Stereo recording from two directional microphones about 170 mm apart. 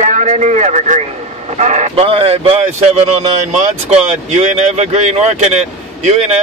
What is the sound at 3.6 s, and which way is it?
A man's voice, 45° right (ahead or behind).